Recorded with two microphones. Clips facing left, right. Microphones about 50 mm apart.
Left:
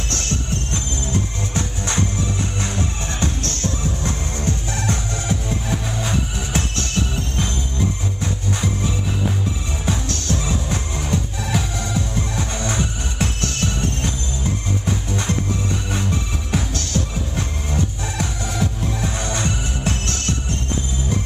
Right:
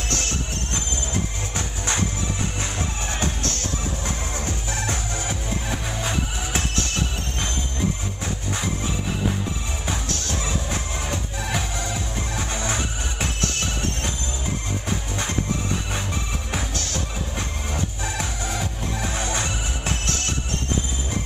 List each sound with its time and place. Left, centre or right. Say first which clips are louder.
1.5 s music: left 3 dB; centre
9.8 s music: left 5 dB; centre